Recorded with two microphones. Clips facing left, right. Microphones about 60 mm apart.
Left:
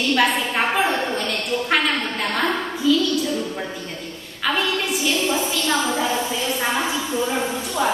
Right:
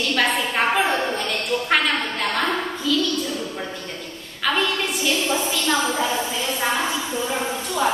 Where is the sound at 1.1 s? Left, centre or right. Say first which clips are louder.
Even; centre.